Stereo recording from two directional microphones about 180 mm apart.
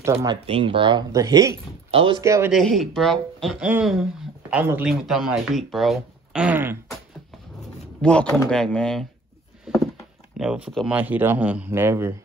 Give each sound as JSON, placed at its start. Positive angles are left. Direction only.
{"t": 0.0, "sound": "speech", "side_deg": -15}
{"t": 0.5, "sound": "speech", "side_deg": -30}
{"t": 1.9, "sound": "speech", "side_deg": -30}
{"t": 2.2, "sound": "speech", "side_deg": -15}
{"t": 2.5, "sound": "speech", "side_deg": 0}
{"t": 8.0, "sound": "speech", "side_deg": 5}
{"t": 10.4, "sound": "speech", "side_deg": -5}